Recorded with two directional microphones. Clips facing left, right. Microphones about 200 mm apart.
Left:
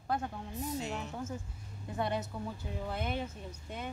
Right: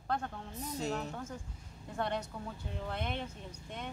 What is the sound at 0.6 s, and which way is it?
Speech, 40° right (ahead or behind).